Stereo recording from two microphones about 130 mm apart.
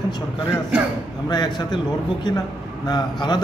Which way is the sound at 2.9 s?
35° left (ahead or behind).